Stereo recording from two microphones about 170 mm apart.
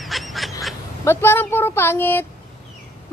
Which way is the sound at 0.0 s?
Centre (ahead or behind).